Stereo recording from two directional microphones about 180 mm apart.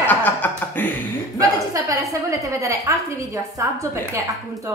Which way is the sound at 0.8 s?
10° left (ahead or behind).